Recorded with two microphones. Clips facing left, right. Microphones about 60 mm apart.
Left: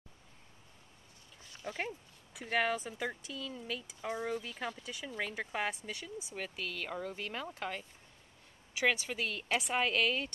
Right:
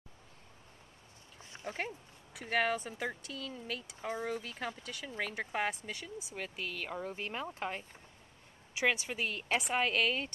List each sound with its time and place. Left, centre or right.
1.4 s a sound: right
1.8 s speech: centre
7.1 s speech: right
9.6 s speech: centre